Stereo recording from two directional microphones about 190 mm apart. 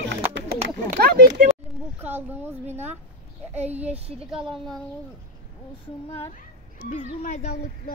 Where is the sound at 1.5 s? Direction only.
10° right (ahead or behind).